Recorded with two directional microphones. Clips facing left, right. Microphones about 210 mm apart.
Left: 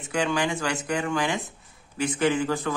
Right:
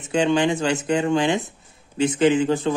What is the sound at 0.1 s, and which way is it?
A man's voice, 25° right (ahead or behind).